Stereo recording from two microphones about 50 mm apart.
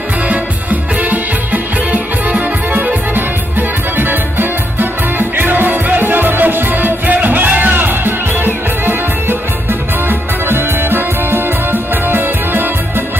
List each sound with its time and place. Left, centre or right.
0.3 s music: right
3.9 s music: right
10.0 s music: right